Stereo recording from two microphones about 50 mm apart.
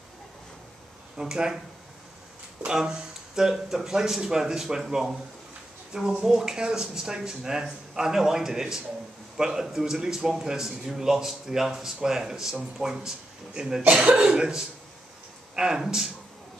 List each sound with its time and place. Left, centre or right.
1.1 s speech: centre
2.6 s speech: centre
13.8 s speech: right